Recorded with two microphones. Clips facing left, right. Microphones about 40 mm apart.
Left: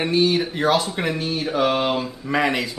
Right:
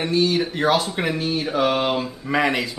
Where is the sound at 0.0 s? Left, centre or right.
Centre.